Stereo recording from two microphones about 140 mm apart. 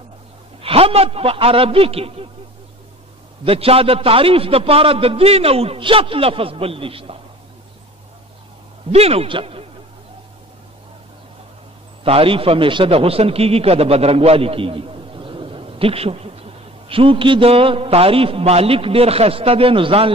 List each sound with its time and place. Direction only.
0.6 s a man's voice: 45° right (ahead or behind)
3.4 s a man's voice: 45° right (ahead or behind)
8.9 s a man's voice: 45° right (ahead or behind)
12.0 s a man's voice: 40° right (ahead or behind)